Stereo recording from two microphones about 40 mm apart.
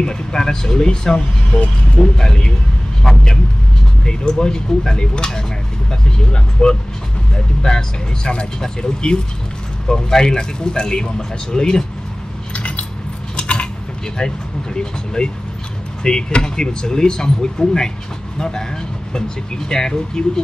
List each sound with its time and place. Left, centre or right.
0.0 s a man's voice: centre
12.5 s keys jangling: left
13.4 s cutlery: left
14.1 s speech: centre